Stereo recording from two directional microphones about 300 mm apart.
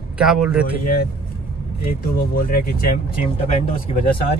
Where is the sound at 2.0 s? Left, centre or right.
Left.